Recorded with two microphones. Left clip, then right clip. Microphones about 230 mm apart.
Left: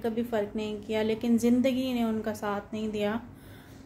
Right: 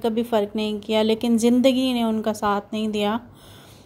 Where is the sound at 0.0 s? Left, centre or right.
Right.